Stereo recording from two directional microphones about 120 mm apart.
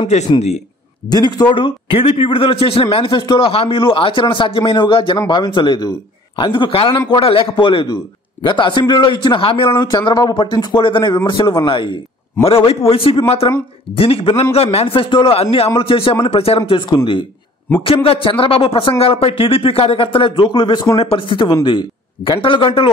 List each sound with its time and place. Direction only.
1.1 s a man's voice: 35° left (ahead or behind)
9.8 s a man's voice: 35° left (ahead or behind)
12.4 s a man's voice: 55° left (ahead or behind)
20.9 s a man's voice: 55° left (ahead or behind)